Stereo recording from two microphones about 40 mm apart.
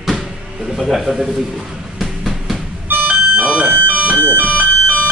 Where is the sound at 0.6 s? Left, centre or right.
Centre.